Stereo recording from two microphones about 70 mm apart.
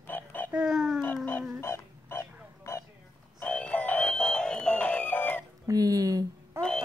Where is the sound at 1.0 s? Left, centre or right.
Left.